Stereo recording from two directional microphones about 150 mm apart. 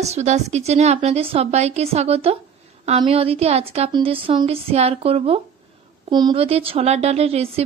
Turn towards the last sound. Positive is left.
turn(degrees=-40)  # may be behind; listen again after turning